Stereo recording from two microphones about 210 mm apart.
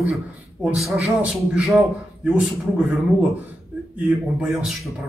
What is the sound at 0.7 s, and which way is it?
Speech, 5° right (ahead or behind).